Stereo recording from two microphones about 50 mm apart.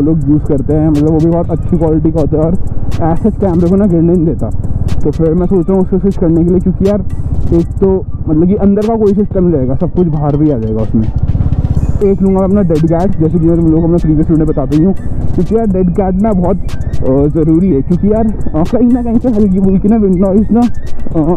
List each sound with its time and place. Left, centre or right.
0.0 s speech: centre
5.0 s speech: centre
7.8 s speech: centre
9.0 s speech: centre